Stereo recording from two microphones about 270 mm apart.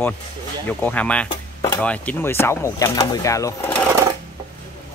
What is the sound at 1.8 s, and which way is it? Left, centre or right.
Speech, centre.